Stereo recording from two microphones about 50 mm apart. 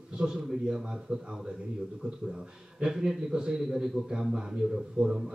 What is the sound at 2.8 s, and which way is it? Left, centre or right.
A man's voice, centre.